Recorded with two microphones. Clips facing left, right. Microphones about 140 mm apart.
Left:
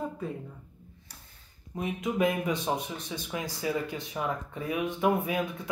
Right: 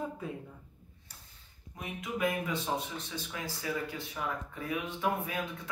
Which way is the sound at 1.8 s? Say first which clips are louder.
Left 6 dB; 20° left (ahead or behind).